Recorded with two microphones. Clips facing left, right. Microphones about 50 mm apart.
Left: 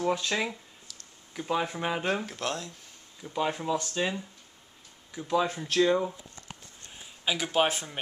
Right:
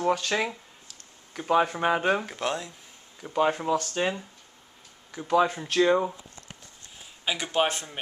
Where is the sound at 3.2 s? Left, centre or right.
Right.